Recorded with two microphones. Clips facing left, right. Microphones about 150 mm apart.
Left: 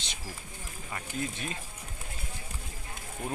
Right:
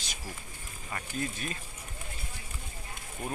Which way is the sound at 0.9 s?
20° left (ahead or behind).